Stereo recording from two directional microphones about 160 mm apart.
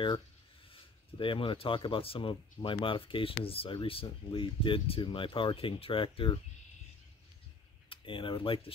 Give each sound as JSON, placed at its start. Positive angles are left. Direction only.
{"t": 0.7, "sound": "speech", "side_deg": 30}
{"t": 7.9, "sound": "speech", "side_deg": 30}